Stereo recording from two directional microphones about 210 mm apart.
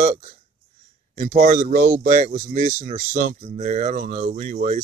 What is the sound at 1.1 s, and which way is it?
Speech, 35° right (ahead or behind).